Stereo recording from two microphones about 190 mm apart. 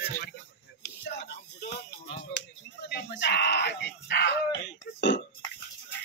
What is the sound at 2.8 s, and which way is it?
Speech, 65° left (ahead or behind).